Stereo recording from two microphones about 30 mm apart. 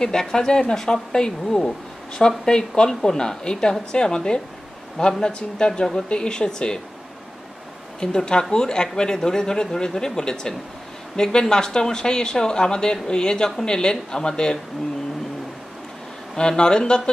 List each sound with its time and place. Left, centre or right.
0.0 s speech: left
2.9 s speech: centre
8.0 s speech: left
16.3 s speech: left